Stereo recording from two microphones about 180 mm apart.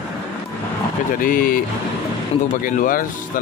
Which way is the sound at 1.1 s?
50° left (ahead or behind).